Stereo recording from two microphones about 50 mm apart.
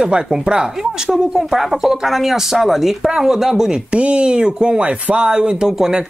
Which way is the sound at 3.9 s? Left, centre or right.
Right.